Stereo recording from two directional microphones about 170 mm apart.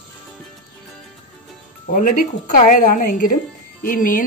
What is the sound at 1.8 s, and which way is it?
Speech, 50° left (ahead or behind).